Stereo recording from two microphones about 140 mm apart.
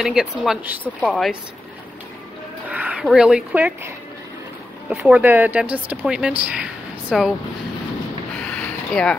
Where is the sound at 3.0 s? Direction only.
5° right (ahead or behind).